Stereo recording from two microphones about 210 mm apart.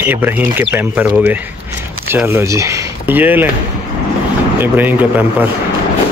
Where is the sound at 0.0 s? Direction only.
10° right (ahead or behind).